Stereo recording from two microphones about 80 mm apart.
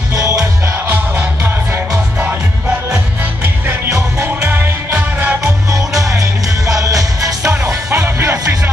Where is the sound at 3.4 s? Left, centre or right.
Right.